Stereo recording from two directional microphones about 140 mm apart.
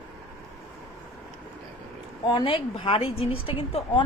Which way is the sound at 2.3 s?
35° left (ahead or behind).